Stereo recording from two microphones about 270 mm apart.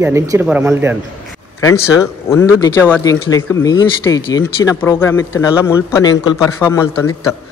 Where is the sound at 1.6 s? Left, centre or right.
Centre.